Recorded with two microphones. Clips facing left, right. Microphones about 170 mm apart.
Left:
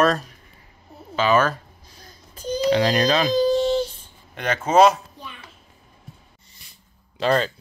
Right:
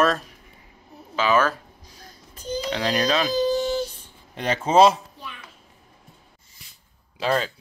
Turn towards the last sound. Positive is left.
turn(degrees=-5)  # may be behind; listen again after turning